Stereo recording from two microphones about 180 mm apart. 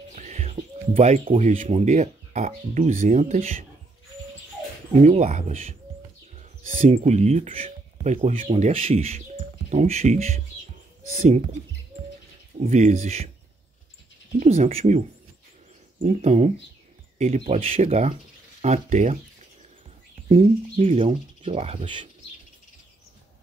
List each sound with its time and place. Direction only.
0.1 s music: 40° right (ahead or behind)
0.9 s speech: 40° right (ahead or behind)
5.0 s speech: 40° right (ahead or behind)
12.5 s speech: 40° right (ahead or behind)
14.4 s speech: 40° right (ahead or behind)
17.7 s speech: 45° right (ahead or behind)
20.2 s speech: 35° right (ahead or behind)